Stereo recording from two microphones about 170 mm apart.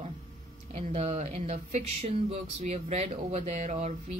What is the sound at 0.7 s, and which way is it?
Speech, 40° right (ahead or behind).